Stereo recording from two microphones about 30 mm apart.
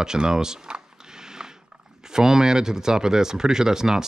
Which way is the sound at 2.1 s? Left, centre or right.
Centre.